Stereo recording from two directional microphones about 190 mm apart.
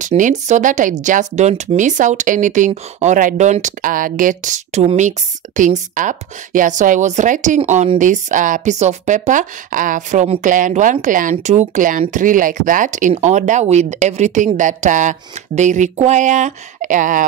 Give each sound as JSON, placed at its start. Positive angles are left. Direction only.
{"t": 0.0, "sound": "speech", "side_deg": -40}